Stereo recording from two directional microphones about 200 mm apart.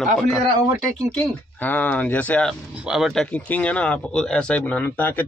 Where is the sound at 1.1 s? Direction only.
5° left (ahead or behind).